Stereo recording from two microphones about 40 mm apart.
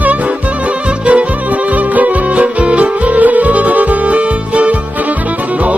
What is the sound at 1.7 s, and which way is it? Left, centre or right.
Music, right.